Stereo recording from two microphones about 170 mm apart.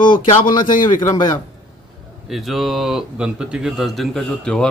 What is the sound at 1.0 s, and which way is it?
Speech, 20° left (ahead or behind).